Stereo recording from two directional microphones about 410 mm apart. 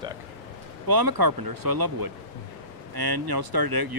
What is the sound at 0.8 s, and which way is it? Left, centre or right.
Speech, right.